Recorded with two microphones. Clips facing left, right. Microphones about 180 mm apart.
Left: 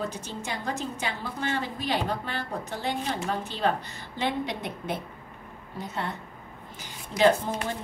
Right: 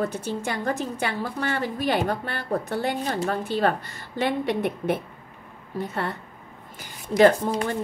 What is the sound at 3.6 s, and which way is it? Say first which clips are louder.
Speech: right 3 dB; 55° right (ahead or behind).